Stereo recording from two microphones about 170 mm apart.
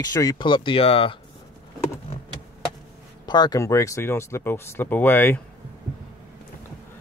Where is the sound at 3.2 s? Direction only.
25° left (ahead or behind).